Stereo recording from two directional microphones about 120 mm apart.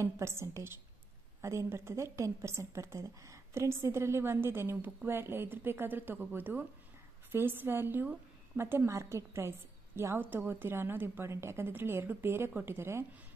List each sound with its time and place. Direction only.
0.0 s a woman's voice: 20° right (ahead or behind)